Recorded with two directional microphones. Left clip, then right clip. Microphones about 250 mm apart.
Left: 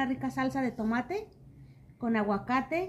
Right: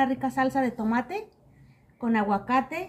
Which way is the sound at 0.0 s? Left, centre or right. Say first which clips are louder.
Right 7 dB; centre.